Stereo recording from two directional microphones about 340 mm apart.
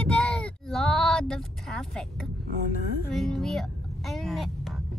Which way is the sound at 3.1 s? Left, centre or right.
Centre.